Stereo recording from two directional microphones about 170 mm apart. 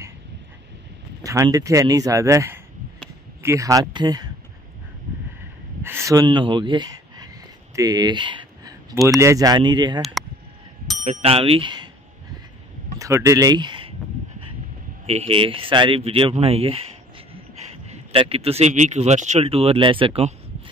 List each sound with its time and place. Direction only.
1.2 s speech: 20° right (ahead or behind)
5.8 s speech: 15° right (ahead or behind)
11.0 s speech: 45° right (ahead or behind); by 11.9 s 25° right (ahead or behind)
13.0 s speech: 20° right (ahead or behind)
15.0 s speech: 35° right (ahead or behind)
17.8 s speech: 35° right (ahead or behind)